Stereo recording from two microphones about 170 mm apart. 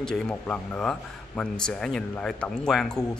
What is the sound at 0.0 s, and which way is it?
Speech, 5° left (ahead or behind).